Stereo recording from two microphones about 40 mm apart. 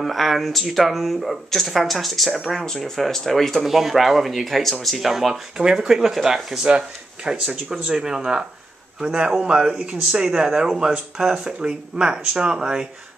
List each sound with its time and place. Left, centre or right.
0.0 s speech: centre
5.3 s speech: centre